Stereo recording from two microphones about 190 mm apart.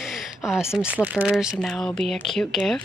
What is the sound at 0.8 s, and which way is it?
Speech, 10° right (ahead or behind).